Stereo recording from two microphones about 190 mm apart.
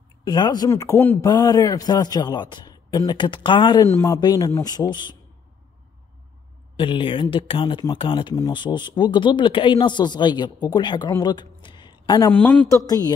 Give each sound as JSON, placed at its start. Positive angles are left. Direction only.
{"t": 0.2, "sound": "speech", "side_deg": 20}
{"t": 6.8, "sound": "speech", "side_deg": 25}
{"t": 12.3, "sound": "a man's voice", "side_deg": 10}